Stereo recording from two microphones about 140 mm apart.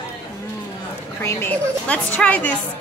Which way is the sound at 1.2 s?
15° left (ahead or behind).